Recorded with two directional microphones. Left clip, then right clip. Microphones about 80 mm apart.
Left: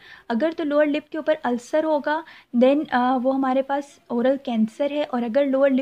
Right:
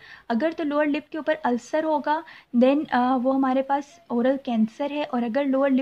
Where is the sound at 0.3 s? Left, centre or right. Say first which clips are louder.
Left 2 dB; left.